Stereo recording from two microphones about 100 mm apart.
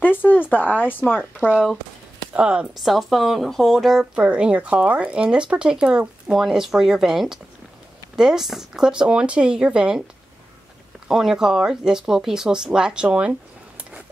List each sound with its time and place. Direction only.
0.0 s speech: 20° left (ahead or behind)
2.3 s speech: 10° right (ahead or behind)
11.1 s speech: 5° right (ahead or behind)